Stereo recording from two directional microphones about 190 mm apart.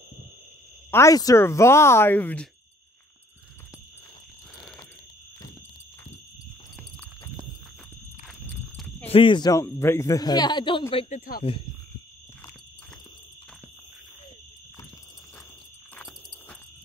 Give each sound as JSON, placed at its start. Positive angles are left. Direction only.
{"t": 0.9, "sound": "speech", "side_deg": 15}
{"t": 8.3, "sound": "a sound", "side_deg": 0}
{"t": 9.0, "sound": "speech", "side_deg": 30}
{"t": 11.1, "sound": "speech", "side_deg": 50}